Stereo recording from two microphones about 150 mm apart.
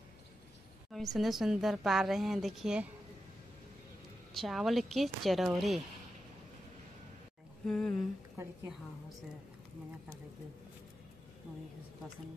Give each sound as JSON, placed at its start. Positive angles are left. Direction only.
{"t": 0.9, "sound": "a woman's voice", "side_deg": 0}
{"t": 4.3, "sound": "a woman's voice", "side_deg": 0}
{"t": 7.6, "sound": "a woman's voice", "side_deg": 0}